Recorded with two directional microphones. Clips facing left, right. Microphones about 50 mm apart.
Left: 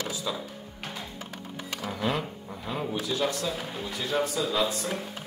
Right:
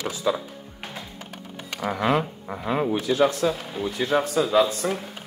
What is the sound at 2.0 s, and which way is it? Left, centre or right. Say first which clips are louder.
Speech: right 7 dB; right.